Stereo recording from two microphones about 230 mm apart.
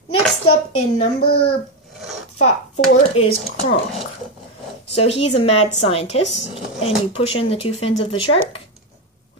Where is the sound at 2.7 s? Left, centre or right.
Left.